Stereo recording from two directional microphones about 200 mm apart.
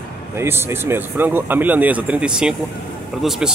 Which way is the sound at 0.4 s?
10° right (ahead or behind).